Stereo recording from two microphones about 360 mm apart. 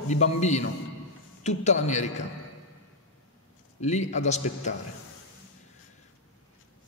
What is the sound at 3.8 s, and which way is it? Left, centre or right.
Speech, centre.